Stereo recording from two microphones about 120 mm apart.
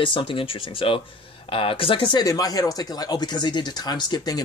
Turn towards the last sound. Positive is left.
turn(degrees=35)  # may be behind; listen again after turning